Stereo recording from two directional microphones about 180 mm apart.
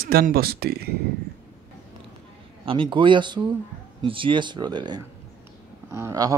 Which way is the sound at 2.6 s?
30° right (ahead or behind).